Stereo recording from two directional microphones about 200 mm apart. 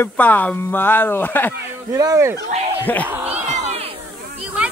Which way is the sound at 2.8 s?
10° left (ahead or behind).